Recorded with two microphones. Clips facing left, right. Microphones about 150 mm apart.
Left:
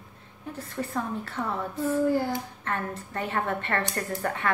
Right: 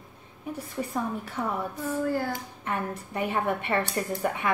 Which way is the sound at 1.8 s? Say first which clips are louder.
Left 5 dB; 15° left (ahead or behind).